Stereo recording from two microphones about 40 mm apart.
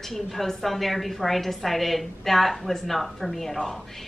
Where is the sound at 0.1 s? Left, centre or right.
Centre.